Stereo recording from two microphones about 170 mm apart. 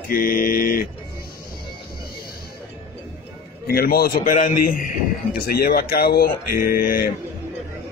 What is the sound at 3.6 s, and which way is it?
A man's voice, 60° left (ahead or behind).